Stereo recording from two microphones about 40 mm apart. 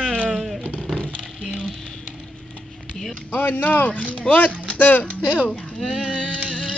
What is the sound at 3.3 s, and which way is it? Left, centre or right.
Speech, left.